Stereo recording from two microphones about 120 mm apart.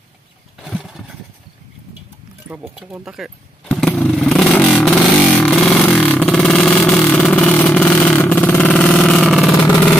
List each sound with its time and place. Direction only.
0.7 s vehicle: 5° right (ahead or behind)
3.2 s speech: centre (ahead or behind)
3.6 s motorcycle: 10° left (ahead or behind)
4.2 s vehicle: 5° left (ahead or behind)